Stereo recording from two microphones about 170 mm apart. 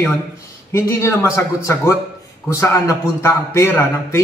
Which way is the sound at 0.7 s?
15° left (ahead or behind).